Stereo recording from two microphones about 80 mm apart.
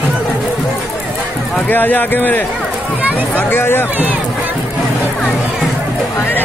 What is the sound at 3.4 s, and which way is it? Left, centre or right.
Speech, left.